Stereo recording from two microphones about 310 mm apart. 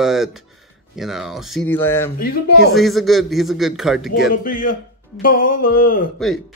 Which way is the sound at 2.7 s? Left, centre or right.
Centre.